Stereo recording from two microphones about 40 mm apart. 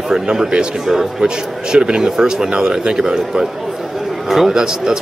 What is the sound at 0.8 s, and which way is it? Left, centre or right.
Speech, centre.